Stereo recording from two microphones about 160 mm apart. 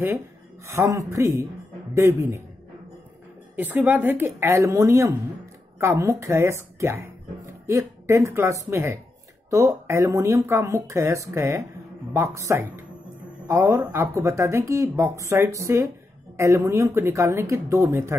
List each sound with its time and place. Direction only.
0.7 s speech: 20° right (ahead or behind)
3.5 s speech: 10° right (ahead or behind)